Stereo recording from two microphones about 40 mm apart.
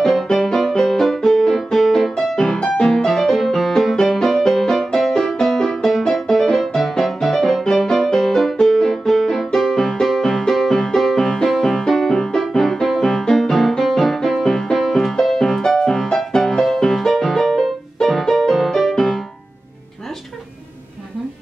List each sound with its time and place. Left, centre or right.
0.0 s music: centre